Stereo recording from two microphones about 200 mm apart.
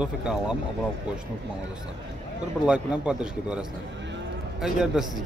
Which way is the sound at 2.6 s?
5° right (ahead or behind).